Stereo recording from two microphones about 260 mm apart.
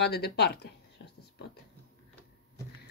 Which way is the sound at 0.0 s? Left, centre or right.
Left.